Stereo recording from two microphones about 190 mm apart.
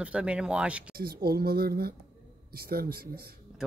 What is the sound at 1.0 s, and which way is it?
Speech, 50° right (ahead or behind).